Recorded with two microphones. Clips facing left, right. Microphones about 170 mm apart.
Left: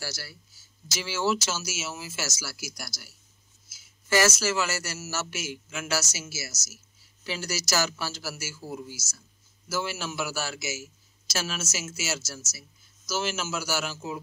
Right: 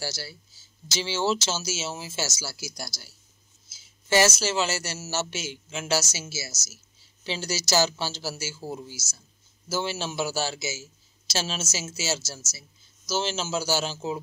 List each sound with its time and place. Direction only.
0.0 s speech: 25° right (ahead or behind)